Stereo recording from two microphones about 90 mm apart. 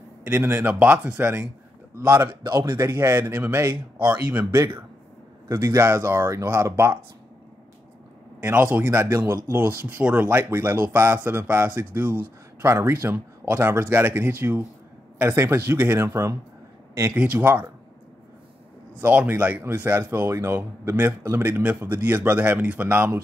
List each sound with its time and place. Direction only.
0.3 s speech: 25° right (ahead or behind)
2.0 s speech: 30° right (ahead or behind)
2.4 s speech: 45° right (ahead or behind)
2.8 s speech: 35° right (ahead or behind); by 4.6 s 15° right (ahead or behind)
5.5 s speech: 35° right (ahead or behind)
8.4 s speech: 20° right (ahead or behind)
17.1 s speech: 15° right (ahead or behind)
18.9 s speech: 20° right (ahead or behind)